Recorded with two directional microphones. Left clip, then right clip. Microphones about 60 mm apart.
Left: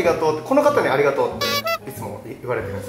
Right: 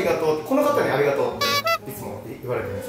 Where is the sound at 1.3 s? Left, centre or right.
Centre.